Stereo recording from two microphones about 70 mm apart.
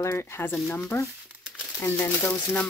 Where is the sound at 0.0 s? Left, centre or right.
Left.